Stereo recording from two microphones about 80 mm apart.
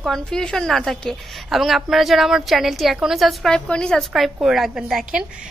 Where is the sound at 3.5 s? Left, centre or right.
Centre.